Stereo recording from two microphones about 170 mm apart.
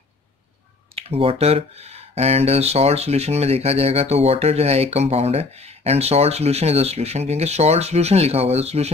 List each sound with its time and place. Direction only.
0.9 s speech: 35° right (ahead or behind)